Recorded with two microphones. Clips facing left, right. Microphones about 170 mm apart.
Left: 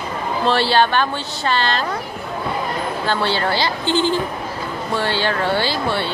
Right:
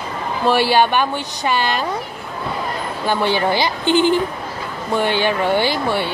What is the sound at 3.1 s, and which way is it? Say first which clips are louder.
Speech: right 4 dB; 15° right (ahead or behind).